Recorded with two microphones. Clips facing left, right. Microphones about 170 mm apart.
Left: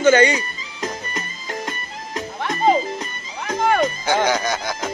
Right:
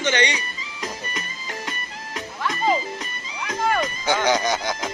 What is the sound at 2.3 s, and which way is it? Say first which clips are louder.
Music: left 4 dB; 45° left (ahead or behind).